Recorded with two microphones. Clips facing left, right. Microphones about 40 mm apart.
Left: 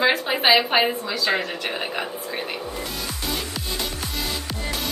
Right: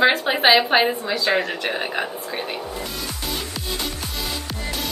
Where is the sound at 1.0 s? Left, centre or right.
Right.